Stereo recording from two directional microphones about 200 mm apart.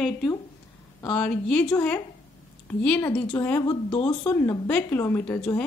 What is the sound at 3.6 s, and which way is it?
Speech, 25° left (ahead or behind).